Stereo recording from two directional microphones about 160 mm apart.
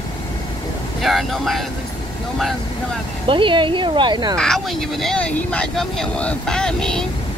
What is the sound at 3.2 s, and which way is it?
Speech, 30° right (ahead or behind).